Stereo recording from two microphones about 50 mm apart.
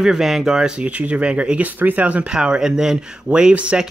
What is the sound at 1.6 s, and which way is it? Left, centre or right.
Speech, right.